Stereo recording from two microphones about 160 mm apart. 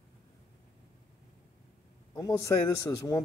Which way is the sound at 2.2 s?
20° left (ahead or behind).